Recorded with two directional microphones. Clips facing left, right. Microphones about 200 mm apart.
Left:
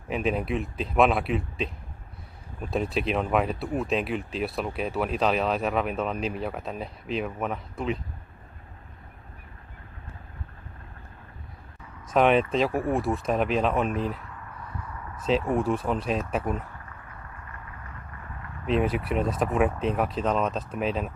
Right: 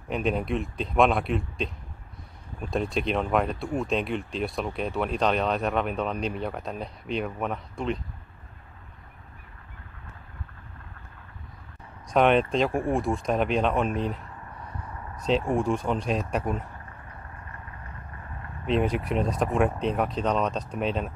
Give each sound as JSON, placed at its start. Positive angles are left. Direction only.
{"t": 0.1, "sound": "speech", "side_deg": 0}
{"t": 2.7, "sound": "speech", "side_deg": 5}
{"t": 12.1, "sound": "speech", "side_deg": 0}
{"t": 15.2, "sound": "speech", "side_deg": 5}
{"t": 18.7, "sound": "speech", "side_deg": 0}